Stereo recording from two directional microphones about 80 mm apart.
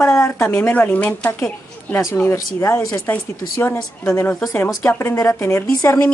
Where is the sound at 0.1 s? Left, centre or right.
Left.